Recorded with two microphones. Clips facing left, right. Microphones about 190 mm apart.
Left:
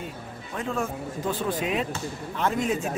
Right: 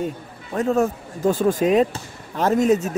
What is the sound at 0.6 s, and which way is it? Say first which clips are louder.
Speech: right 10 dB; 40° right (ahead or behind).